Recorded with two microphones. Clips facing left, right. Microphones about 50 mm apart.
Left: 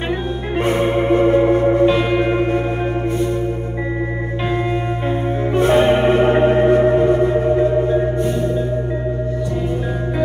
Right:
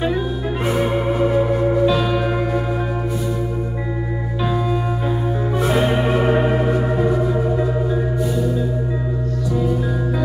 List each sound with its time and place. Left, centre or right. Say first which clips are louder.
0.7 s music: left 4 dB; left
5.6 s music: left 6 dB; left